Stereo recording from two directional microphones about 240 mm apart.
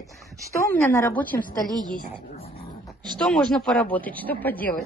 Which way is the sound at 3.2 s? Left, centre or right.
Centre.